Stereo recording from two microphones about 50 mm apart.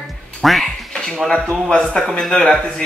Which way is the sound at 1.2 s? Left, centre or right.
Centre.